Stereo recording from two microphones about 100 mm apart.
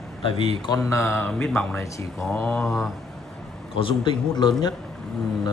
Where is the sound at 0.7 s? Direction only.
30° left (ahead or behind).